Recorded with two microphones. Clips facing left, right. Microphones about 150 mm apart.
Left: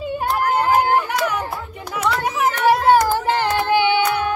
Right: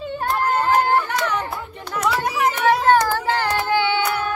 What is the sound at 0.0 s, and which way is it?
Chatter, 10° left (ahead or behind).